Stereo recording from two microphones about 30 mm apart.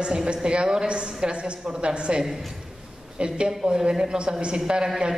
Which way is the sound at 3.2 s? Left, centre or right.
Right.